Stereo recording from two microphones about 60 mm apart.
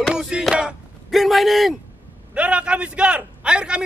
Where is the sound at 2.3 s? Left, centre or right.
Right.